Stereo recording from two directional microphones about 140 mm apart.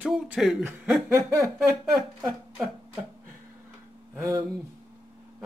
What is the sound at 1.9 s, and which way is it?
Speech, centre (ahead or behind).